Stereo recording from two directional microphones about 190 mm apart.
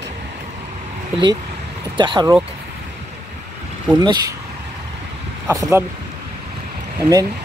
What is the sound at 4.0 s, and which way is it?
Speech, 20° right (ahead or behind).